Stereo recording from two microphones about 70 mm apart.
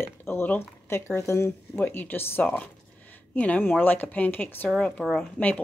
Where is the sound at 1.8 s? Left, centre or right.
Left.